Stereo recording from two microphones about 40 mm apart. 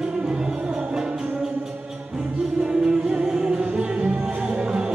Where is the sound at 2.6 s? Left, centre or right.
Centre.